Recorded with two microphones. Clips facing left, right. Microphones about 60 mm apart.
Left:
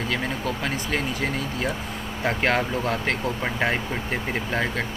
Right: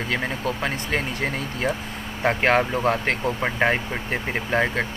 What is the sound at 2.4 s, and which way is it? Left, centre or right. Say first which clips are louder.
Speech: right 3 dB; centre.